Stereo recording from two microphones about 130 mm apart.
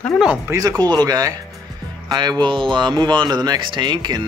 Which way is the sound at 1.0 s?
30° right (ahead or behind).